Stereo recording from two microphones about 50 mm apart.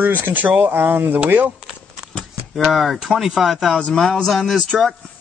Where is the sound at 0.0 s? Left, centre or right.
Right.